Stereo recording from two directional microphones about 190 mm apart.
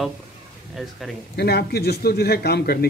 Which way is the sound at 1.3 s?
55° left (ahead or behind).